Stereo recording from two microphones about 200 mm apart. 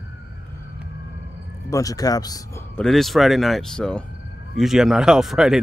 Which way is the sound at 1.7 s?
15° left (ahead or behind).